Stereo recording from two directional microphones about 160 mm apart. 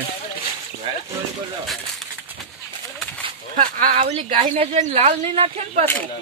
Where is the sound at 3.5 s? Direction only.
55° right (ahead or behind); by 5.9 s 40° right (ahead or behind).